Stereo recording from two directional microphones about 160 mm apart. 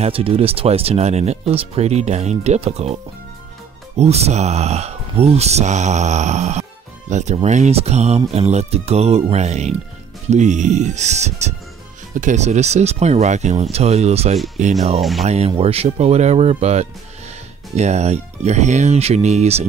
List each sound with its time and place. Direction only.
0.0 s speech: 35° right (ahead or behind)
15.0 s speech: centre (ahead or behind)
15.2 s speech: 40° right (ahead or behind)